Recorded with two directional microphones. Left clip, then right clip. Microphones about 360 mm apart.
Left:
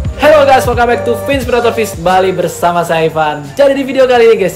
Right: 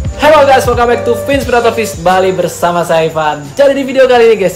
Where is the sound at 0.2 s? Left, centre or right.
Centre.